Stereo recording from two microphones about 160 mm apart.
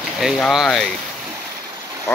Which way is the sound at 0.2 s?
Centre (ahead or behind).